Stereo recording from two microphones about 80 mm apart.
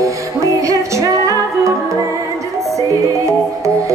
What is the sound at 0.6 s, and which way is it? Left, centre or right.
Music, right.